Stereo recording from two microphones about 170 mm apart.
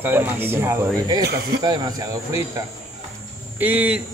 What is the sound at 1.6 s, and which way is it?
Speech, 25° right (ahead or behind).